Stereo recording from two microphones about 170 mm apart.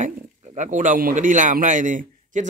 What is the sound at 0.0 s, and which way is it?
Speech, 45° right (ahead or behind).